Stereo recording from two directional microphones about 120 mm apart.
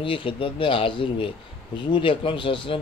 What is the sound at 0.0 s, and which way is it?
Speech, 45° left (ahead or behind).